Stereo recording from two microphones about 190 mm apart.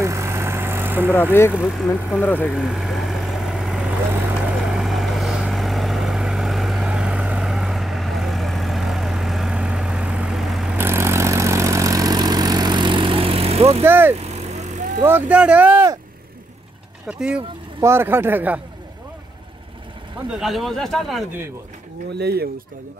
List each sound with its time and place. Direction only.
0.0 s vehicle: 15° right (ahead or behind)
1.5 s speech: 5° right (ahead or behind)
2.1 s speech: 10° left (ahead or behind)
2.5 s vehicle: 5° right (ahead or behind); by 13.8 s 30° right (ahead or behind)
13.8 s speech: 10° right (ahead or behind)
14.1 s vehicle: 35° right (ahead or behind)
15.0 s speech: 10° right (ahead or behind)
17.7 s speech: 15° right (ahead or behind)
20.2 s speech: centre (ahead or behind)
22.2 s speech: 55° right (ahead or behind)